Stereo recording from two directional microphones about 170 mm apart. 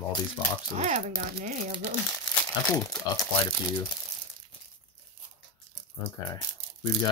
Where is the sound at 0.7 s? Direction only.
45° right (ahead or behind).